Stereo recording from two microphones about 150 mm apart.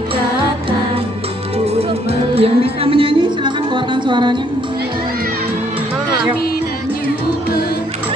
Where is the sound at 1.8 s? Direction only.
40° right (ahead or behind).